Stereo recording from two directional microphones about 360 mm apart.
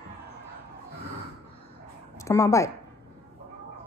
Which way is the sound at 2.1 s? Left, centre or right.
Centre.